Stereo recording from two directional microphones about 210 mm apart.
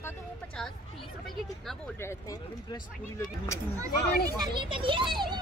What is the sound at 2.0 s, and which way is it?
Speech, 15° left (ahead or behind).